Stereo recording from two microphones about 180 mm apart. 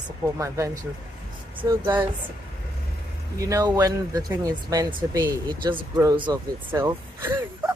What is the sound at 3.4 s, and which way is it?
Speech, 20° right (ahead or behind).